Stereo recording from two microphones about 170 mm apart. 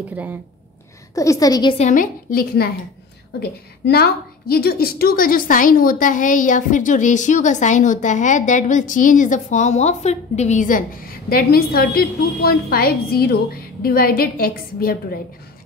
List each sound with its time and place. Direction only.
1.1 s a woman's voice: 20° left (ahead or behind)
1.8 s a woman's voice: 50° left (ahead or behind)